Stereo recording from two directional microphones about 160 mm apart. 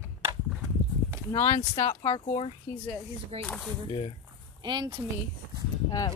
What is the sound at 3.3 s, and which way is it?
Speech, 40° right (ahead or behind).